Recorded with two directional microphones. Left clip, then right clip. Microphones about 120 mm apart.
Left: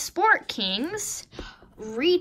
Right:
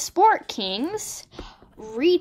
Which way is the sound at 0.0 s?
10° right (ahead or behind).